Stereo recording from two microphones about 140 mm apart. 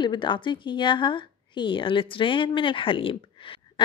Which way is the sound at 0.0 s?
35° left (ahead or behind).